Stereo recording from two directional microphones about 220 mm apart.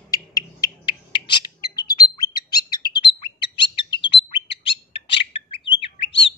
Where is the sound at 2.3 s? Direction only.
20° left (ahead or behind).